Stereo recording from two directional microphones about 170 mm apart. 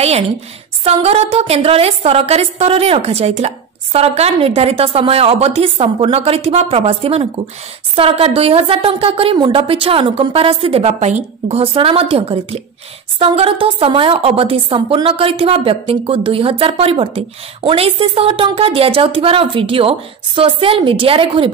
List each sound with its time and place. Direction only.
0.8 s a woman's voice: 40° right (ahead or behind)